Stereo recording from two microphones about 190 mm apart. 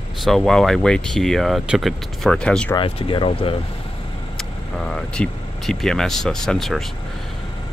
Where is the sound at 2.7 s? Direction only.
30° left (ahead or behind).